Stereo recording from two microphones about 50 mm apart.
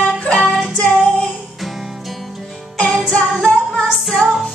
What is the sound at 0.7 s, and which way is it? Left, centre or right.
Female singing, left.